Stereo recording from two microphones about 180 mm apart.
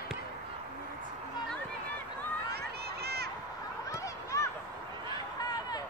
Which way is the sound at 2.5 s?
65° right (ahead or behind).